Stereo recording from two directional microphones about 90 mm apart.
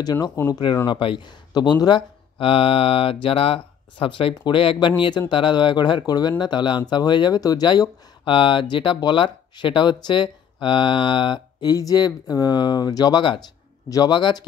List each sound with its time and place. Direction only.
0.0 s speech: 45° left (ahead or behind)
0.8 s speech: 65° left (ahead or behind)
13.8 s a man's voice: 40° left (ahead or behind)
14.1 s speech: 60° left (ahead or behind)